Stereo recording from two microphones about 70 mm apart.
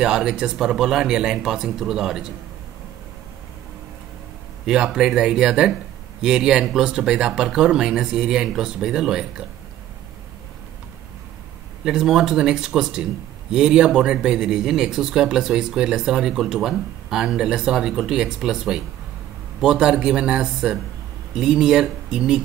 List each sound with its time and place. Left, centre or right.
0.0 s a man's voice: centre
4.6 s a man's voice: centre
11.8 s a man's voice: centre